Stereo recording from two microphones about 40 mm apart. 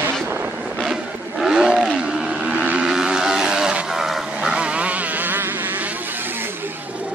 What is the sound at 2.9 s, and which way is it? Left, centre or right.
Vehicle, centre.